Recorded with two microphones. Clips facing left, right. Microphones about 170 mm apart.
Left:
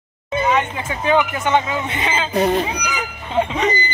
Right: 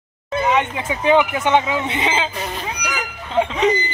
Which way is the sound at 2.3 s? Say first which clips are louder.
Left 11 dB; 40° left (ahead or behind).